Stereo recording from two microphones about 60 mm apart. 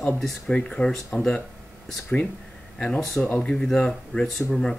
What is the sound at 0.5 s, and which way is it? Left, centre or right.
Speech, left.